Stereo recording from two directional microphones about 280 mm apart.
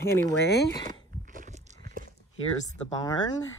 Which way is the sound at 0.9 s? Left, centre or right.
Right.